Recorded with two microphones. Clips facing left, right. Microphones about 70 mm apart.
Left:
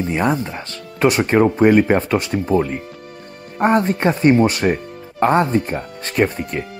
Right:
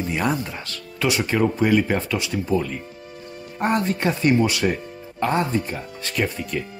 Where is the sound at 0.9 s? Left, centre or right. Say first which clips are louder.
Left 7 dB; left.